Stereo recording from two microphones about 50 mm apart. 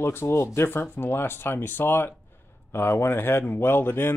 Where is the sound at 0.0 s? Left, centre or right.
Left.